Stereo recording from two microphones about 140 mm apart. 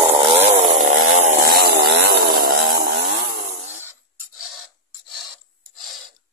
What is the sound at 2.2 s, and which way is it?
Chainsaw, 90° right.